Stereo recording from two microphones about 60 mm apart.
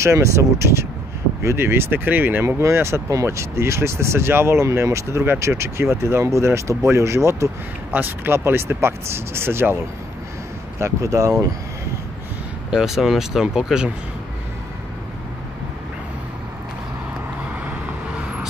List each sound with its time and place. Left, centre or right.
0.0 s speech: right
1.6 s speech: right
2.4 s speech: right
3.1 s speech: right
7.9 s speech: right
10.8 s speech: right
12.7 s speech: centre